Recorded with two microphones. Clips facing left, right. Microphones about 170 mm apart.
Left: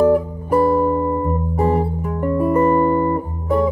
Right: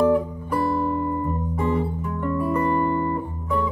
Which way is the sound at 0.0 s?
40° left (ahead or behind).